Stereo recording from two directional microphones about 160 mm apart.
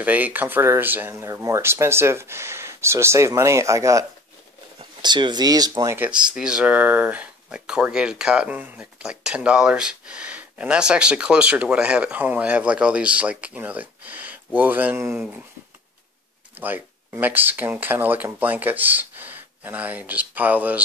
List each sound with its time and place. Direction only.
0.0 s speech: 10° right (ahead or behind)
6.0 s speech: 5° right (ahead or behind)
16.5 s speech: 10° right (ahead or behind)